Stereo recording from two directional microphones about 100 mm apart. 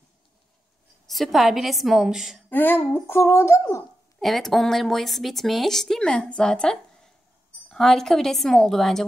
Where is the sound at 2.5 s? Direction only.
20° left (ahead or behind).